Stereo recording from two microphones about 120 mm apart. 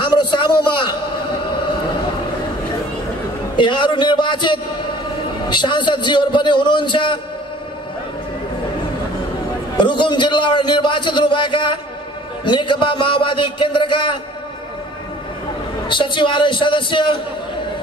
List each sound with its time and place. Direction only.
0.0 s a sound: 40° left (ahead or behind)
3.5 s a man's voice: 40° left (ahead or behind)
9.8 s a man's voice: 40° left (ahead or behind)
15.9 s a man's voice: 40° left (ahead or behind)